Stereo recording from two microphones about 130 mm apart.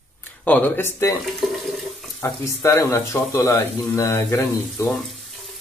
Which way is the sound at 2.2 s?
20° left (ahead or behind).